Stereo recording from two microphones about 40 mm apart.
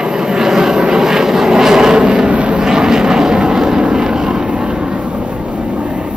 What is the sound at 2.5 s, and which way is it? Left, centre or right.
Vehicle, centre.